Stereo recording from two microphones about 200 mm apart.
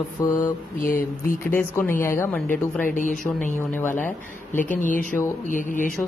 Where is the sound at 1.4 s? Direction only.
10° left (ahead or behind).